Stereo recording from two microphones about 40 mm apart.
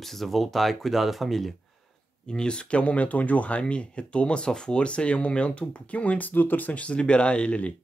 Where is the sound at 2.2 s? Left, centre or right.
Left.